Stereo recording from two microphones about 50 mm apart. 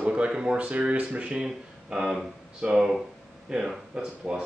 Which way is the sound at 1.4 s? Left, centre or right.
Centre.